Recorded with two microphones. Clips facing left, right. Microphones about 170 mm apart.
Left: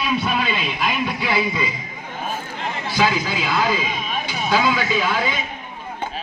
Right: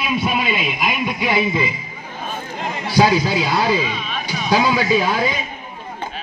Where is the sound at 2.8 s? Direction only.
35° right (ahead or behind).